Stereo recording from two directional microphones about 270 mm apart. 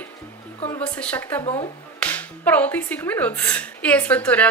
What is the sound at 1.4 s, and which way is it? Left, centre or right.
Speech, centre.